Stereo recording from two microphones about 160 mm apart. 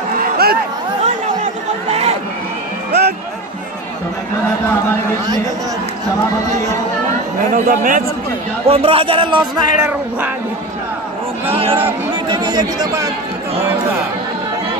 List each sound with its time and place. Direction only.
1.0 s chatter: 40° right (ahead or behind)
2.9 s music: 90° right
7.5 s a man's voice: 55° right (ahead or behind)
8.6 s speech: 35° right (ahead or behind)
9.8 s music: 10° right (ahead or behind)
11.5 s speech: 35° right (ahead or behind)
12.3 s speech: 25° right (ahead or behind)